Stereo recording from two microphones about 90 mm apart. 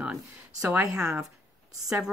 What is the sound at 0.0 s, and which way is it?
A woman's voice, 10° right (ahead or behind).